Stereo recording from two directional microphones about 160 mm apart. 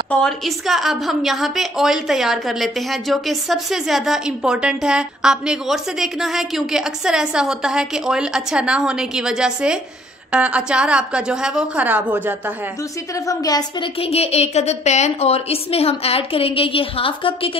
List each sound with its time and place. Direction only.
0.1 s a woman's voice: centre (ahead or behind)
13.3 s a woman's voice: 25° left (ahead or behind)
14.0 s a woman's voice: 40° left (ahead or behind)